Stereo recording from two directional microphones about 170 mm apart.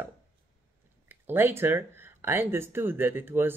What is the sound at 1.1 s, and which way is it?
Speech, 10° right (ahead or behind).